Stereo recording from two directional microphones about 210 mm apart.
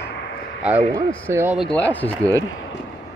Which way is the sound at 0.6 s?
5° right (ahead or behind).